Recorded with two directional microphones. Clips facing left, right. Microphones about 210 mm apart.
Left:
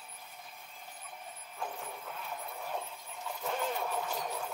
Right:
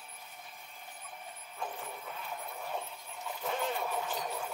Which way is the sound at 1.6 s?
Centre (ahead or behind).